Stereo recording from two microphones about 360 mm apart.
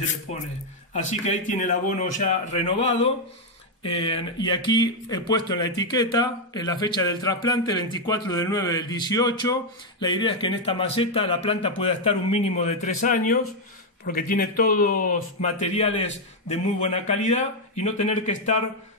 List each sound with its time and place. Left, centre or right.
0.3 s speech: centre